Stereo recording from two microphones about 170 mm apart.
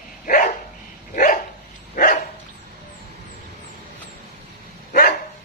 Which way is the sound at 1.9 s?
55° left (ahead or behind).